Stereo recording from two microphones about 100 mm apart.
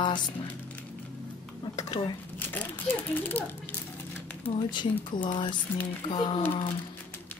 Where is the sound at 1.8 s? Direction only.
40° left (ahead or behind).